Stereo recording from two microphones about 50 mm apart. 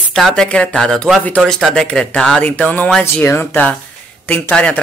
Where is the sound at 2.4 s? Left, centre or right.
Left.